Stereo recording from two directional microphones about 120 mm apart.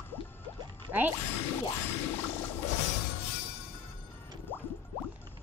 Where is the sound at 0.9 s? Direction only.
15° right (ahead or behind).